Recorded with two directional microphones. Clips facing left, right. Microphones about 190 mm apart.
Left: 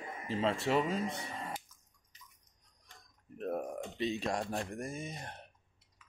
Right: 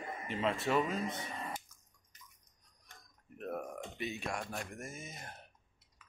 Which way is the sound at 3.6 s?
30° left (ahead or behind).